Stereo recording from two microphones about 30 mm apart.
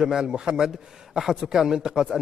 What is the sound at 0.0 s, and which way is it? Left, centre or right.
A man's voice, right.